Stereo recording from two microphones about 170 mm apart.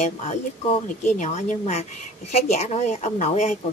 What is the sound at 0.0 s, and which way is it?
A woman's voice, 45° left (ahead or behind).